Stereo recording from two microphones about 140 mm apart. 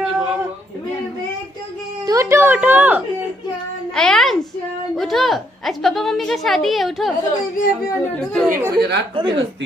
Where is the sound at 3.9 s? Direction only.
5° left (ahead or behind).